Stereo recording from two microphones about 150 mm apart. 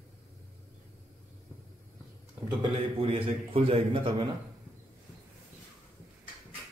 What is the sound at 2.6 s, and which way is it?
A man's voice, 35° right (ahead or behind).